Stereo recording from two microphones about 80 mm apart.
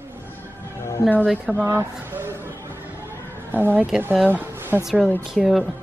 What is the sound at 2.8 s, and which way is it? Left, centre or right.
Music, right.